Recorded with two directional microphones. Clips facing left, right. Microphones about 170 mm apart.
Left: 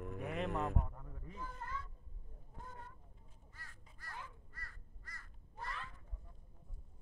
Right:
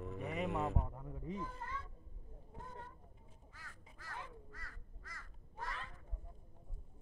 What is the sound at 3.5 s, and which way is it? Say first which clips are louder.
Quack: right 2 dB; 90° right.